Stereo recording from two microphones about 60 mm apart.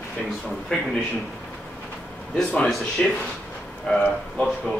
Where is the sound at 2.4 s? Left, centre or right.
Centre.